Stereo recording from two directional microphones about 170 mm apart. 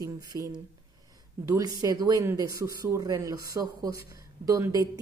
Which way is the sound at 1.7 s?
20° right (ahead or behind).